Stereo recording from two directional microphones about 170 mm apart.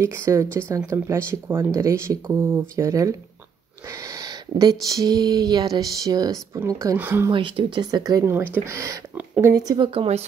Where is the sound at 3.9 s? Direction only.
20° right (ahead or behind).